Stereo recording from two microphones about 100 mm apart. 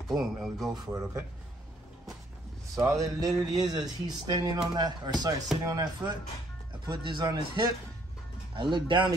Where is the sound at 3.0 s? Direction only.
40° right (ahead or behind).